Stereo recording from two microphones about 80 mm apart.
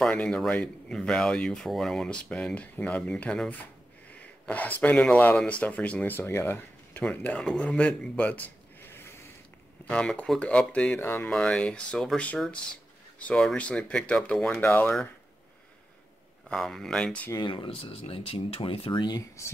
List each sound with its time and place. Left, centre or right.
0.0 s speech: centre
9.8 s speech: centre
11.2 s speech: centre
14.6 s speech: left
16.4 s speech: centre
17.4 s speech: left